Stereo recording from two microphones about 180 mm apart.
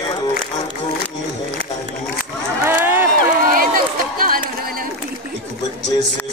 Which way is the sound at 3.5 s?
50° right (ahead or behind).